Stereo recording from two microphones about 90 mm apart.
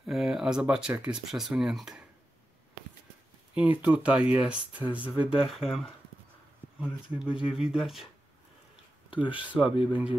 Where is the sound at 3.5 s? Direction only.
15° right (ahead or behind).